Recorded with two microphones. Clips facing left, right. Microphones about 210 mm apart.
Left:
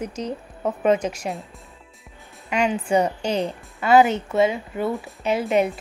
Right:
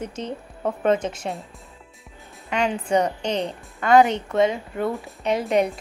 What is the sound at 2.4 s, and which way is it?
A woman's voice, 10° left (ahead or behind).